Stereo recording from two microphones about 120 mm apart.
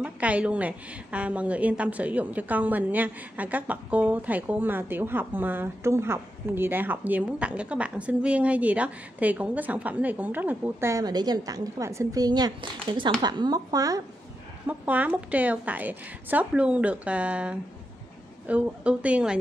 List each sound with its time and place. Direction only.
0.0 s a woman's voice: 10° right (ahead or behind); by 14.0 s 30° right (ahead or behind)
14.7 s a woman's voice: 10° right (ahead or behind)